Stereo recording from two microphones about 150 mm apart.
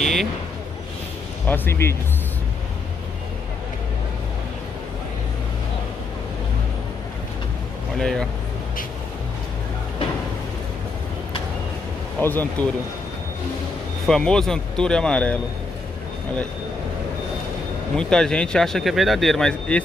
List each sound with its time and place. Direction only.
0.0 s vehicle: centre (ahead or behind)
1.5 s speech: 15° left (ahead or behind)
8.0 s speech: 5° left (ahead or behind)
12.2 s speech: 10° left (ahead or behind)
14.0 s speech: 5° left (ahead or behind)
17.9 s speech: 5° left (ahead or behind)